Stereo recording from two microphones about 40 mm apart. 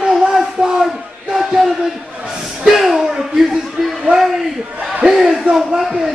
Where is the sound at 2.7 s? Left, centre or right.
Centre.